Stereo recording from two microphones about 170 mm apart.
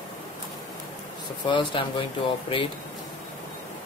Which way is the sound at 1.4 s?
30° left (ahead or behind).